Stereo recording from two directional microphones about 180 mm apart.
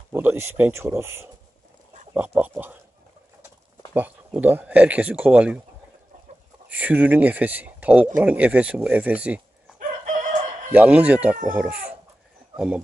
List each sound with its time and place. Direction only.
0.1 s speech: 10° right (ahead or behind)
3.9 s speech: 10° right (ahead or behind)
6.7 s speech: 10° right (ahead or behind)
10.7 s speech: 10° right (ahead or behind)